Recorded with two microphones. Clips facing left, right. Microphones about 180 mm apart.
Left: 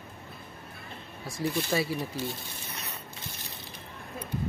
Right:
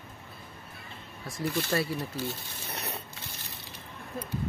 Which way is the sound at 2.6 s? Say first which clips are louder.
Right 4 dB; 65° right (ahead or behind).